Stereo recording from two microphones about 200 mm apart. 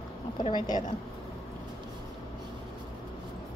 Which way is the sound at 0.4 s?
20° left (ahead or behind).